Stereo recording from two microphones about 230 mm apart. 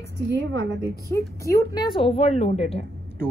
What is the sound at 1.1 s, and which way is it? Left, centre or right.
A woman's voice, centre.